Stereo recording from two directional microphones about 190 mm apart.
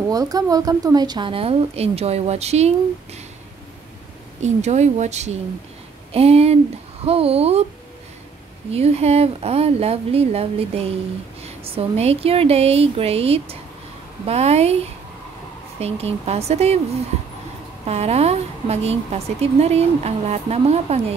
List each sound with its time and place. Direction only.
0.1 s a woman's voice: 20° right (ahead or behind); by 2.7 s 35° right (ahead or behind)
4.4 s a woman's voice: 35° right (ahead or behind)
8.6 s a woman's voice: 35° right (ahead or behind)
15.8 s a woman's voice: 30° right (ahead or behind)
17.8 s a woman's voice: 35° right (ahead or behind)